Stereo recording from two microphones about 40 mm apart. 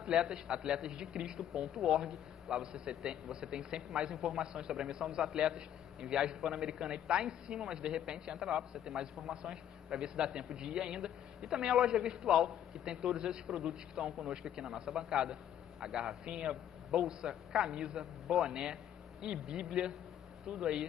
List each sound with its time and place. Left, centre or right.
0.0 s a man's voice: centre